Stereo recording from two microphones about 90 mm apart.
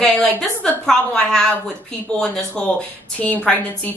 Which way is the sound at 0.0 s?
5° left (ahead or behind).